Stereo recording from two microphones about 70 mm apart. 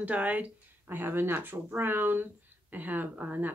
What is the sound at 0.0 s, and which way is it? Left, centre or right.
Speech, right.